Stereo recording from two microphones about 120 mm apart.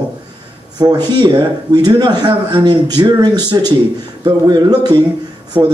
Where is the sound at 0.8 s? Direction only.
35° right (ahead or behind).